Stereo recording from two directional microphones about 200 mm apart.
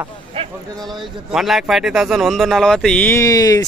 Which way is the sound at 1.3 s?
Centre (ahead or behind).